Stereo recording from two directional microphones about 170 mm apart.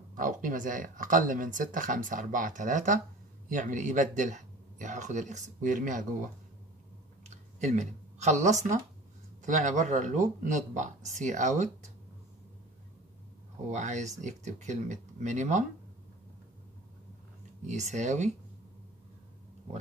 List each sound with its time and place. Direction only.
0.1 s speech: 50° right (ahead or behind)
7.2 s speech: 45° right (ahead or behind)
13.7 s speech: 45° right (ahead or behind)
17.6 s speech: 45° right (ahead or behind)